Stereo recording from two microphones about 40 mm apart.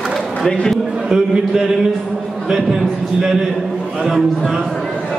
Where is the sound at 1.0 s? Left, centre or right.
Centre.